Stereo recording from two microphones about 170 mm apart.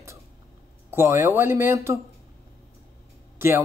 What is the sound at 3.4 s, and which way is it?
Speech, 15° right (ahead or behind).